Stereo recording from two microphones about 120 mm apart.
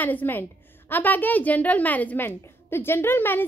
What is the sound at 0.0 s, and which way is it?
A woman's voice, 15° left (ahead or behind).